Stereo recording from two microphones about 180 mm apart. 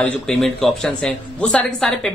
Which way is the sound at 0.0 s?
5° left (ahead or behind).